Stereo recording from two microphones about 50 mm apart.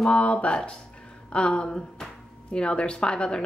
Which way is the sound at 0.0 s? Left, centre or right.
Left.